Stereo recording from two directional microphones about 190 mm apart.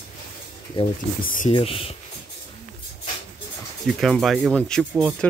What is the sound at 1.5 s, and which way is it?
Speech, 30° left (ahead or behind).